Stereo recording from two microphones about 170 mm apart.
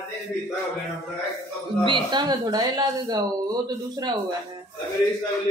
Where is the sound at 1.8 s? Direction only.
30° right (ahead or behind).